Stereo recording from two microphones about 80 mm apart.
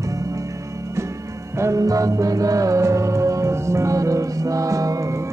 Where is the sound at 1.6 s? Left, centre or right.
Right.